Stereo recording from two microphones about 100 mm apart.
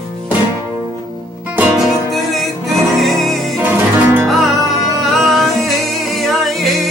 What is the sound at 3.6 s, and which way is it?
Music, 20° right (ahead or behind).